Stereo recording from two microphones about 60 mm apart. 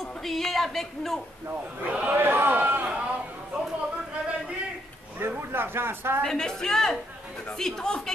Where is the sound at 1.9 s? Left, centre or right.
Right.